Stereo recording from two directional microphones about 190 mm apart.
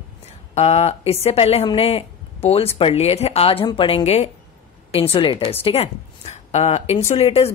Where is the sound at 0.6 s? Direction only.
35° left (ahead or behind).